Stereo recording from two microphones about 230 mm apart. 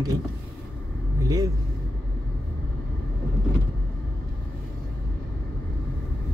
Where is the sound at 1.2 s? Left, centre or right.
Centre.